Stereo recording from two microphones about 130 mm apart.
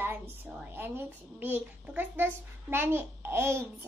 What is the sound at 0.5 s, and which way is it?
A child's voice, 15° right (ahead or behind).